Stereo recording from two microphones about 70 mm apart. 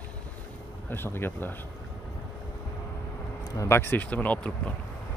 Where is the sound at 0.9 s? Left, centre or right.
Left.